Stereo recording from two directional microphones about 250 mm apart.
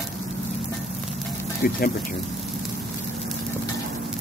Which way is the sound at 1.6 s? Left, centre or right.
Left.